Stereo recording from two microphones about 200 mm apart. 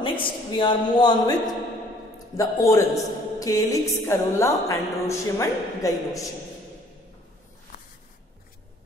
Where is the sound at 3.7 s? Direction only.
15° left (ahead or behind).